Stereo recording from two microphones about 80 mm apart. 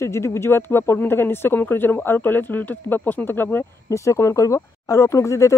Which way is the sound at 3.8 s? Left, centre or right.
Left.